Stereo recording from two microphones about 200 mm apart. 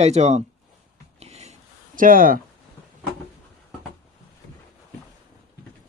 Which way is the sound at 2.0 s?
45° right (ahead or behind).